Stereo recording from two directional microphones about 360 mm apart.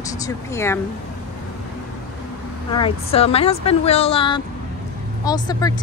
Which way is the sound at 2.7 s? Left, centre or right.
Centre.